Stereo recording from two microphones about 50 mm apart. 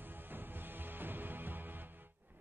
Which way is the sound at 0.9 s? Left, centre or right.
Right.